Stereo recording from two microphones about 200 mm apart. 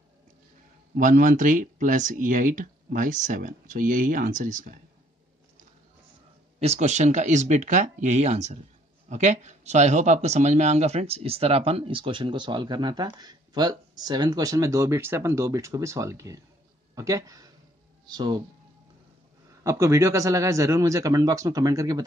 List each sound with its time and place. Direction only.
0.9 s speech: 40° right (ahead or behind)
6.6 s speech: 35° right (ahead or behind)
19.6 s speech: 15° right (ahead or behind)